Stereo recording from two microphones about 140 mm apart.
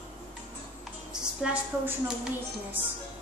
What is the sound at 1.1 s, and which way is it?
Speech, 5° right (ahead or behind).